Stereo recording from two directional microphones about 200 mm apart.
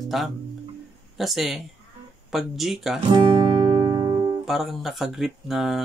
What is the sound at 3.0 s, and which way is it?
Guitar, 20° right (ahead or behind).